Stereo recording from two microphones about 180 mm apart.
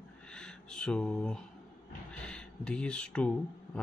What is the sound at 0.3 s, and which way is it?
Speech, 5° left (ahead or behind).